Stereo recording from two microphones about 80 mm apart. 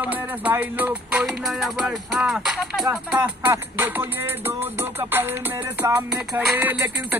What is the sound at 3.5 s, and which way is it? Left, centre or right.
Music, right.